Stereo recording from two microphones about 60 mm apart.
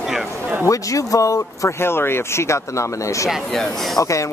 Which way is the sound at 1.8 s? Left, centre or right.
Left.